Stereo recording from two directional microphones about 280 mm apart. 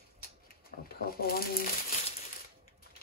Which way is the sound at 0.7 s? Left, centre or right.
Left.